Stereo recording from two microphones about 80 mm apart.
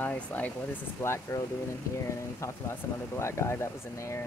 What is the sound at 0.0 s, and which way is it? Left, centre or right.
Speech, left.